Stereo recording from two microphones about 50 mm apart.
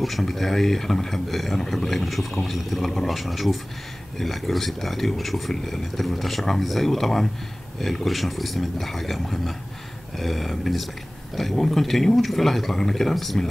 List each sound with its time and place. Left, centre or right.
0.0 s speech: centre